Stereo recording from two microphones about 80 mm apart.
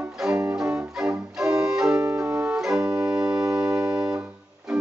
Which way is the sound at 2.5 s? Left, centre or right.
Centre.